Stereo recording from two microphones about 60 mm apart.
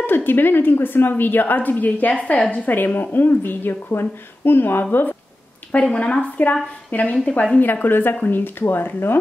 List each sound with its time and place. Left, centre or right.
0.0 s a woman's voice: left
5.7 s a woman's voice: left